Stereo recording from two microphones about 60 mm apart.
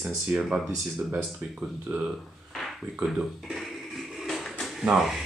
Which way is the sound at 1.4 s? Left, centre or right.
Right.